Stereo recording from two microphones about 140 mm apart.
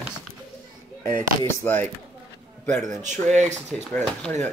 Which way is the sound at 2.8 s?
60° right (ahead or behind).